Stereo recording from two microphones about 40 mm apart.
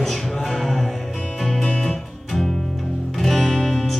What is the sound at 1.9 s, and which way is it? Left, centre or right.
Music, centre.